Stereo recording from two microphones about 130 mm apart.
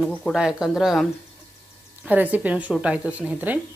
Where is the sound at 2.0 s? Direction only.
10° right (ahead or behind).